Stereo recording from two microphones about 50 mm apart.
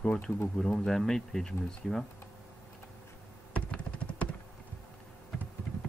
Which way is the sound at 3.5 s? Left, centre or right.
Left.